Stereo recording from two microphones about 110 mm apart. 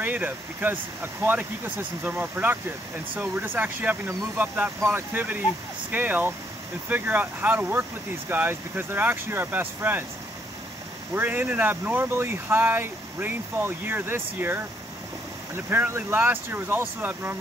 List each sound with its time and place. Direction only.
0.0 s speech: 15° right (ahead or behind)
11.1 s speech: 15° right (ahead or behind)
15.7 s speech: 20° right (ahead or behind)